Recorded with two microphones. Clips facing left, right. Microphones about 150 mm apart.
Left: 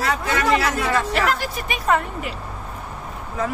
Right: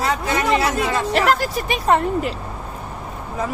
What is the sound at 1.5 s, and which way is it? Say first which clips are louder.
Speech: right 3 dB; 35° right (ahead or behind).